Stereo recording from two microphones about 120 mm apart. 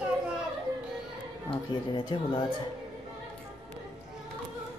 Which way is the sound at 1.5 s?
45° left (ahead or behind).